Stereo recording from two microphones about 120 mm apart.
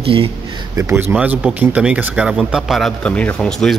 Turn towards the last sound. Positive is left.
turn(degrees=5)  # may be behind; listen again after turning